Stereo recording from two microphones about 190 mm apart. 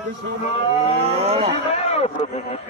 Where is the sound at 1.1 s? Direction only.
30° right (ahead or behind).